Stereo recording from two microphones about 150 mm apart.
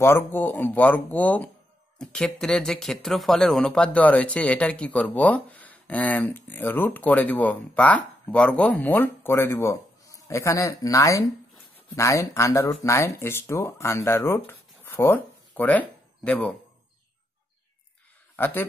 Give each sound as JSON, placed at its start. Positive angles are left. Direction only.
{"t": 0.0, "sound": "speech", "side_deg": 15}
{"t": 18.3, "sound": "a man's voice", "side_deg": 15}